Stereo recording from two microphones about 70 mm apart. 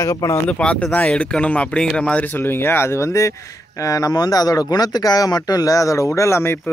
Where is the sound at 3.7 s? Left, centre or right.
Left.